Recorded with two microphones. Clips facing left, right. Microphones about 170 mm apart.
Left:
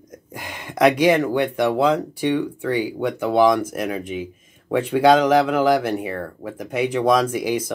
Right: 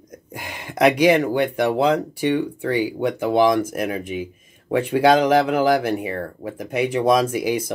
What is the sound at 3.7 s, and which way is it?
Speech, 10° right (ahead or behind).